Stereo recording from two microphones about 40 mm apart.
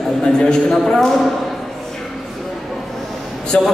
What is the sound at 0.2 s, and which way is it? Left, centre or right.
Speech, left.